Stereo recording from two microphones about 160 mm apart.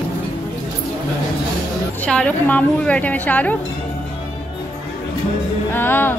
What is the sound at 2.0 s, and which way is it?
A woman's voice, 5° left (ahead or behind).